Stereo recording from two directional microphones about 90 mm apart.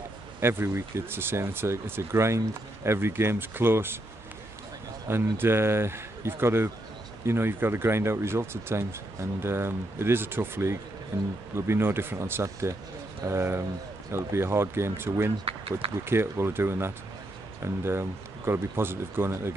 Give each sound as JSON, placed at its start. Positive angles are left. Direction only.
{"t": 0.4, "sound": "speech", "side_deg": -25}
{"t": 5.0, "sound": "speech", "side_deg": -25}